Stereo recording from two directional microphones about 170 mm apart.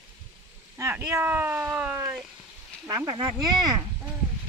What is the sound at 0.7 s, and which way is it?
Speech, 15° right (ahead or behind).